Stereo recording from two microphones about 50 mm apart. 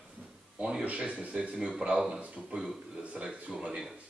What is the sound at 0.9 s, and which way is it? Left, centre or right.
Speech, right.